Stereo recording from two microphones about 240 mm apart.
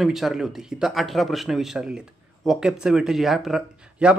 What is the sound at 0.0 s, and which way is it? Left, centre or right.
A man's voice, centre.